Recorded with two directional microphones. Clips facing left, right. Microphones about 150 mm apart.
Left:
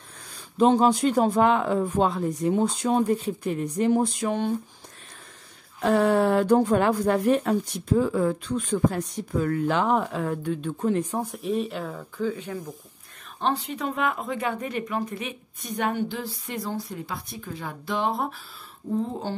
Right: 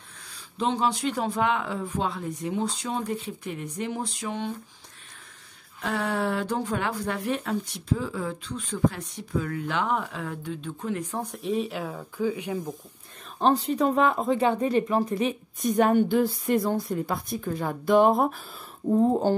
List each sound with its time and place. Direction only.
0.6 s speech: 45° left (ahead or behind)
3.1 s speech: 40° left (ahead or behind)
5.9 s speech: 40° left (ahead or behind)
11.3 s speech: centre (ahead or behind)
13.4 s speech: 40° right (ahead or behind)